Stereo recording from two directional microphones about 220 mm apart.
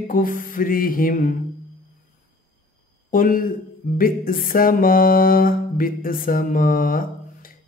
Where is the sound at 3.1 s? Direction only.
40° left (ahead or behind).